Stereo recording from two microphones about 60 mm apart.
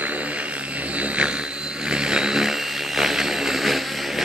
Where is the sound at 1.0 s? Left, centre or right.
Centre.